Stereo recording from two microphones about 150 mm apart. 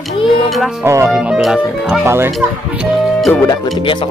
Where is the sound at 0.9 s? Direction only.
20° right (ahead or behind).